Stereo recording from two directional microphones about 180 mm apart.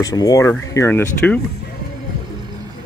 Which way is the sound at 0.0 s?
20° left (ahead or behind).